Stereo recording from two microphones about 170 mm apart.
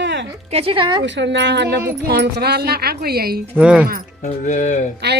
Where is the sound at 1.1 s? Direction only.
90° right.